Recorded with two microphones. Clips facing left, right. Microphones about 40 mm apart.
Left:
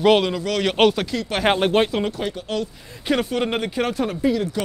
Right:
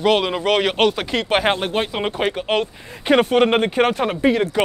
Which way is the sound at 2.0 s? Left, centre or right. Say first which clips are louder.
Right 5 dB; right.